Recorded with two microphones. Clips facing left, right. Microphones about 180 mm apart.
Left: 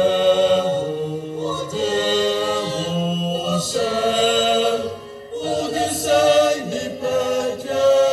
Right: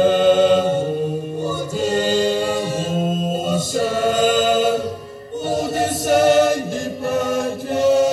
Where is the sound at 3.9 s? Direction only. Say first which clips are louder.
Right 1 dB; 50° right (ahead or behind).